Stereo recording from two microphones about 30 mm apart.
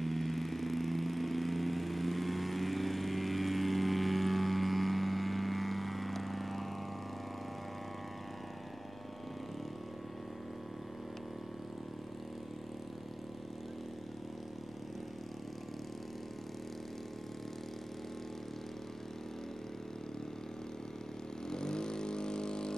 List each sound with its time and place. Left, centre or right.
0.0 s vehicle: centre
21.5 s vehicle: left